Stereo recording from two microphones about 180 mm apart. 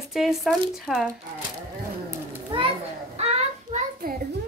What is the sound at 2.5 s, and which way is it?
Children playing, 30° right (ahead or behind).